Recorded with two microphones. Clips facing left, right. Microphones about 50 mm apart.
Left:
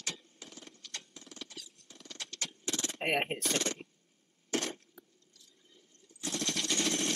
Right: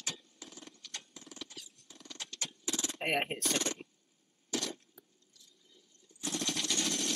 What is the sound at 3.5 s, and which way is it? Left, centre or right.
Speech, left.